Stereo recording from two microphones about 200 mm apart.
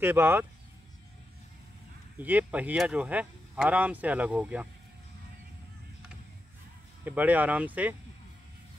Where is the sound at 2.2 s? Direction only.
10° right (ahead or behind).